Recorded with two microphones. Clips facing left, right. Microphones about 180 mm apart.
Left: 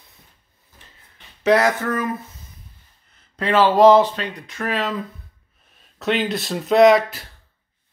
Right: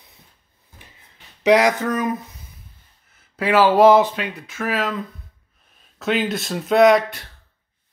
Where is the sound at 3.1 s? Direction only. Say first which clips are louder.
Right 1 dB; 10° right (ahead or behind).